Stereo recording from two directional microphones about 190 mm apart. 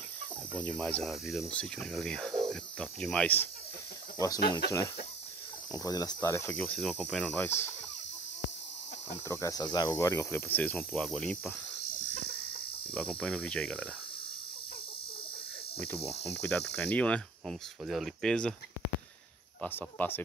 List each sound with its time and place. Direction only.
0.5 s speech: 5° left (ahead or behind)
4.4 s speech: 55° left (ahead or behind)
5.7 s speech: 20° left (ahead or behind)
9.3 s speech: 20° left (ahead or behind)
12.9 s speech: 5° left (ahead or behind)
16.3 s speech: 10° left (ahead or behind)
19.6 s speech: 10° left (ahead or behind)